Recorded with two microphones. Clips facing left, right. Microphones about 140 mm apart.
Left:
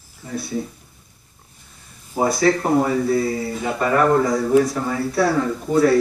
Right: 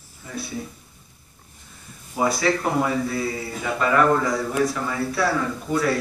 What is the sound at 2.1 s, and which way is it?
A man's voice, 40° left (ahead or behind).